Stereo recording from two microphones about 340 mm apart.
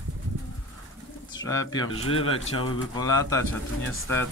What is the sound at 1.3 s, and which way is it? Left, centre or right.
Speech, centre.